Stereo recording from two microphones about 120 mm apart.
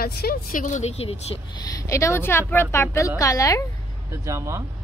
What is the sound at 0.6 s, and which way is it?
Speech, 80° left.